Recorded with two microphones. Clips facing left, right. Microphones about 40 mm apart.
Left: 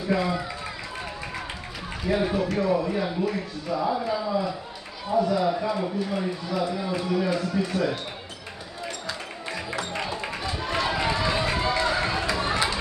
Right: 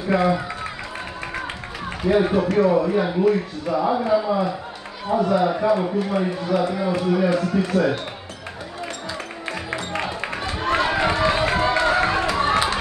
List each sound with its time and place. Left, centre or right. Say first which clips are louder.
0.1 s speech: right 6 dB; right
2.0 s speech: right 6 dB; right
5.7 s a man's voice: right 7 dB; right
6.7 s a man's voice: right 5 dB; right
9.9 s run: right 4 dB; right